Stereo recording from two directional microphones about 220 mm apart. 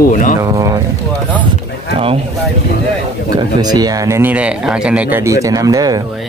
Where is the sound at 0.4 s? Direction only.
15° right (ahead or behind).